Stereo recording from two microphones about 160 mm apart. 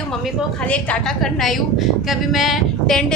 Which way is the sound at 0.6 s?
5° left (ahead or behind).